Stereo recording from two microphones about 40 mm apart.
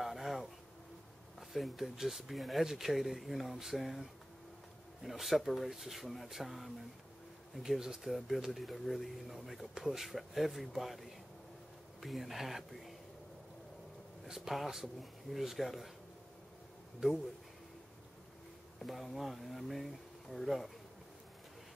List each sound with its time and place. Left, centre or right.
0.0 s a sound: centre
1.5 s speech: centre
7.8 s speech: centre
8.5 s speech: centre
14.2 s speech: centre
17.0 s speech: centre
18.9 s speech: centre